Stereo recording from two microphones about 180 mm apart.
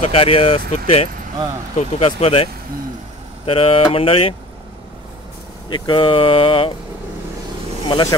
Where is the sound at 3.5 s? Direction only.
30° left (ahead or behind).